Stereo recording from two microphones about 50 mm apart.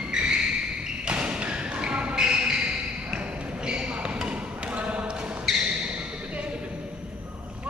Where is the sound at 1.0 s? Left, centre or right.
Right.